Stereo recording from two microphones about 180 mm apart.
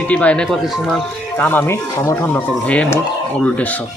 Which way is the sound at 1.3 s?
10° left (ahead or behind).